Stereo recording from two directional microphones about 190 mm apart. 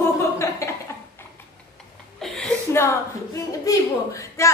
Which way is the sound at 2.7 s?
15° left (ahead or behind).